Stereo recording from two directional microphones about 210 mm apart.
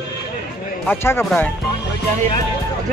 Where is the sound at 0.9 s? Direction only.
10° left (ahead or behind).